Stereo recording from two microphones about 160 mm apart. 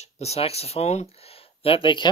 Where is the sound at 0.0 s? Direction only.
40° left (ahead or behind).